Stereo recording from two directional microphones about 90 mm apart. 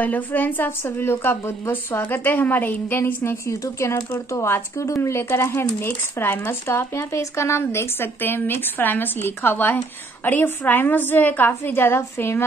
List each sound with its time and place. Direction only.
0.0 s speech: 20° left (ahead or behind)
3.4 s speech: 35° left (ahead or behind)